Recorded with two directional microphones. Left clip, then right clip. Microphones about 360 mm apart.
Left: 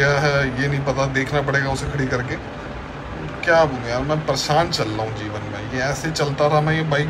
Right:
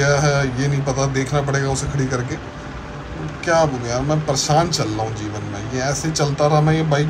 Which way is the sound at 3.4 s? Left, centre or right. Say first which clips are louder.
Left 1 dB; centre.